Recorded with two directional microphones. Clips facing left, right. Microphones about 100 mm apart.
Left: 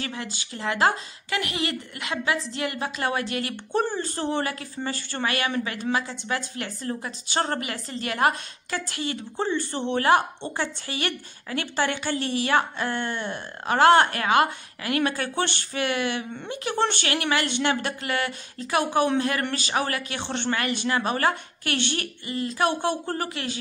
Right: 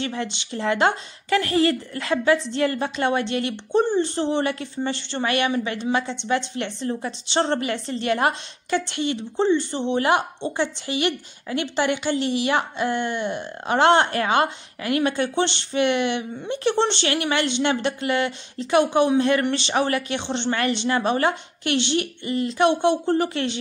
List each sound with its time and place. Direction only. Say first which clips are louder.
0.0 s a woman's voice: right 6 dB; 30° right (ahead or behind)